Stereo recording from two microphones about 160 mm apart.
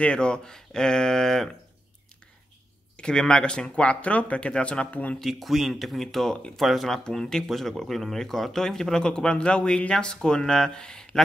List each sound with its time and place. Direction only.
0.0 s speech: 5° left (ahead or behind)
3.0 s speech: 5° left (ahead or behind)